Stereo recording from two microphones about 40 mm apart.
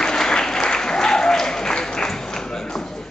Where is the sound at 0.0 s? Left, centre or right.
Centre.